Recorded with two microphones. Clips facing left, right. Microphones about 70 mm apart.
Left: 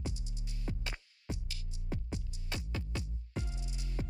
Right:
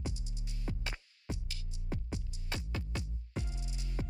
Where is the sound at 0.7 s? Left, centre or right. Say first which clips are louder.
Even; right.